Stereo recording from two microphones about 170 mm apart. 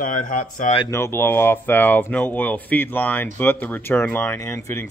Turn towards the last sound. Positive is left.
turn(degrees=15)  # may be behind; listen again after turning